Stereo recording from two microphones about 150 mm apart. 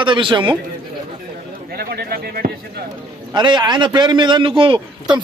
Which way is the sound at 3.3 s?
30° right (ahead or behind).